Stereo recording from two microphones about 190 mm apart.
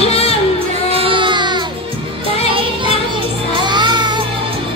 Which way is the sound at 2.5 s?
30° right (ahead or behind).